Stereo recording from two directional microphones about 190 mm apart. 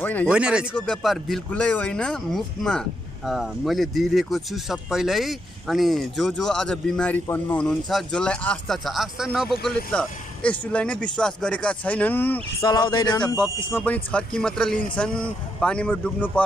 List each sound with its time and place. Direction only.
0.0 s speech: 10° left (ahead or behind)
0.3 s speech: 5° right (ahead or behind); by 12.4 s 10° left (ahead or behind)
12.5 s speech: 25° left (ahead or behind)
13.4 s speech: 5° left (ahead or behind)